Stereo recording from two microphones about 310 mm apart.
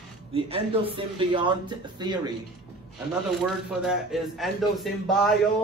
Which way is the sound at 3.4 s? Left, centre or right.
Centre.